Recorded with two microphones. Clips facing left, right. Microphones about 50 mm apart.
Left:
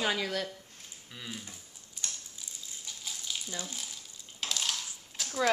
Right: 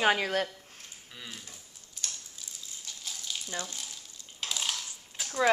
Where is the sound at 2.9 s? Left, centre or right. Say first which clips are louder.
Even; centre.